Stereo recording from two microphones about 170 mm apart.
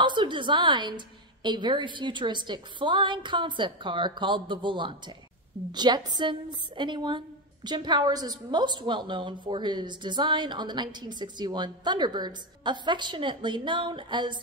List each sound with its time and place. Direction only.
0.0 s a woman's voice: 30° right (ahead or behind)